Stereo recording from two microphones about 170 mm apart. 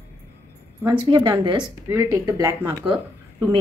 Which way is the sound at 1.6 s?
15° right (ahead or behind).